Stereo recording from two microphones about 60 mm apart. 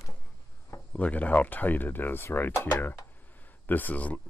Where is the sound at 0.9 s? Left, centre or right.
Left.